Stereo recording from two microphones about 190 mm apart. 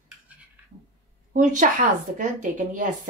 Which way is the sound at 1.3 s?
40° right (ahead or behind).